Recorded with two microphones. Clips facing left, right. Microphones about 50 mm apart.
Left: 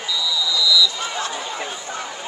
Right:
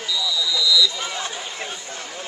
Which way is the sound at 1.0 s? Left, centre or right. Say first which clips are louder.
Left 3 dB; centre.